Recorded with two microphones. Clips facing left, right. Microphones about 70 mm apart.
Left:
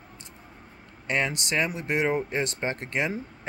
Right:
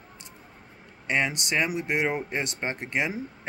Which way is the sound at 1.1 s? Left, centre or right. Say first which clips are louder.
Right 1 dB; centre.